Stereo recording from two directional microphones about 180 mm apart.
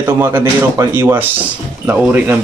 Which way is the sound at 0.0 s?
15° right (ahead or behind).